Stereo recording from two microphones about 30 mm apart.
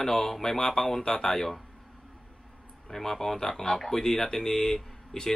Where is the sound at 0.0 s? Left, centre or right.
Centre.